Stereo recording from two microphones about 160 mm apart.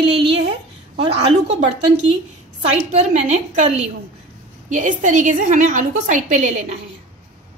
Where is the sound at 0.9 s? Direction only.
40° right (ahead or behind).